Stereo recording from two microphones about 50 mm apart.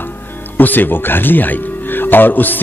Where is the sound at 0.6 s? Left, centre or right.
Left.